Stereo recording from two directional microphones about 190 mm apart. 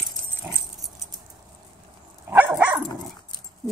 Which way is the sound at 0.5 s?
10° right (ahead or behind).